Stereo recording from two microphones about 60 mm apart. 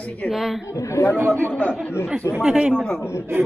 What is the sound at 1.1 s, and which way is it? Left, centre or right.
Speech, right.